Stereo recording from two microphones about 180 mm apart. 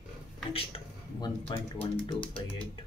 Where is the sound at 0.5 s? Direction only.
30° left (ahead or behind).